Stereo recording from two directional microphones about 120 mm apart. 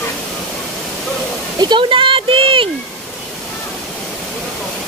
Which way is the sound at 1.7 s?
45° right (ahead or behind).